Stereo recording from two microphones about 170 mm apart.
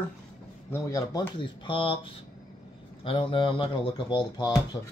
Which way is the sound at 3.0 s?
30° left (ahead or behind).